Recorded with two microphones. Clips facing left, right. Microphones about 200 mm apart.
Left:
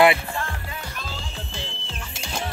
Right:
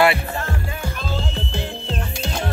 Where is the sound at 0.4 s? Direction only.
45° right (ahead or behind).